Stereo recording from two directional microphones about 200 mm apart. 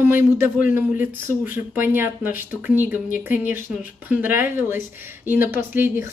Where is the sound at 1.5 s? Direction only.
10° right (ahead or behind).